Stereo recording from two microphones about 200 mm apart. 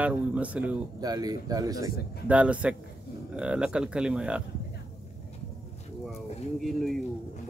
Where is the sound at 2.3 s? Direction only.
5° right (ahead or behind).